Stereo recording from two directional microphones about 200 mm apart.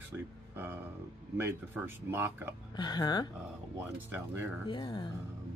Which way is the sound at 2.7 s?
20° left (ahead or behind).